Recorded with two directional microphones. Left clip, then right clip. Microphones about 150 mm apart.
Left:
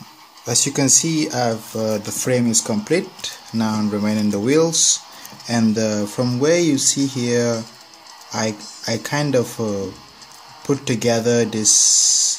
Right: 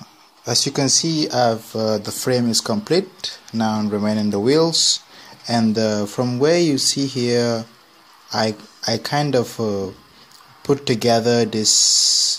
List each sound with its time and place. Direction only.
0.5 s speech: 10° right (ahead or behind)
3.2 s speech: 10° right (ahead or behind)